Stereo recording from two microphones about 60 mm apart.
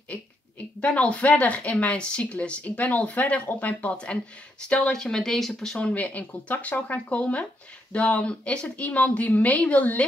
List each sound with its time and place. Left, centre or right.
0.7 s speech: left; by 5.5 s centre
5.8 s speech: left